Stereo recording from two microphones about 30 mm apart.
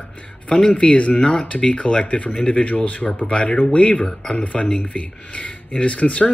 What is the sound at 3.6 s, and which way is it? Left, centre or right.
Speech, left.